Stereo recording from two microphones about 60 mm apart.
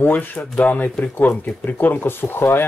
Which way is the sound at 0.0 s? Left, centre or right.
Left.